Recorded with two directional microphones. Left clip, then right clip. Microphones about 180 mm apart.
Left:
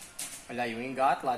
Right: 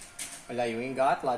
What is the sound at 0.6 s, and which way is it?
Speech, 45° right (ahead or behind).